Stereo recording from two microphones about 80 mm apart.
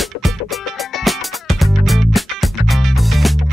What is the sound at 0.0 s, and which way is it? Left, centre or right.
Music, centre.